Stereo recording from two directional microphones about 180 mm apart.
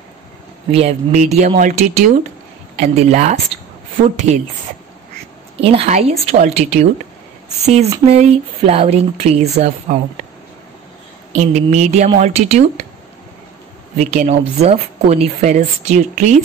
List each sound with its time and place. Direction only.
0.7 s speech: 35° right (ahead or behind)
5.6 s speech: 35° right (ahead or behind)
11.3 s speech: 40° right (ahead or behind)
13.9 s speech: 40° right (ahead or behind)